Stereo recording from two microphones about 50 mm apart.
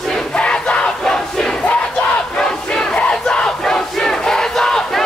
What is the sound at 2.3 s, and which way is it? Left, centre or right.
Crowd, centre.